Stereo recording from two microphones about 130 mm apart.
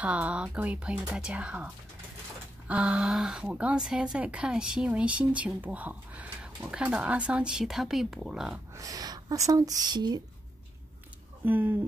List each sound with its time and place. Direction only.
0.0 s speech: 10° right (ahead or behind)
2.7 s speech: 10° right (ahead or behind)
8.7 s speech: 25° right (ahead or behind)
11.4 s speech: 15° right (ahead or behind)